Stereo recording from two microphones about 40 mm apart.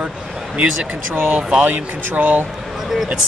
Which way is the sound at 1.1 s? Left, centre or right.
Right.